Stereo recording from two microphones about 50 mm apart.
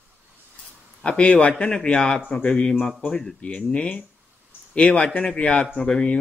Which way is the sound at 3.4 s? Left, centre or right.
Left.